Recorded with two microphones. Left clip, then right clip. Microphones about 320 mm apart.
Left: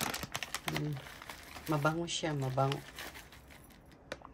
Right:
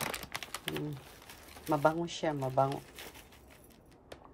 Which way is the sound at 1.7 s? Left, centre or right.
Centre.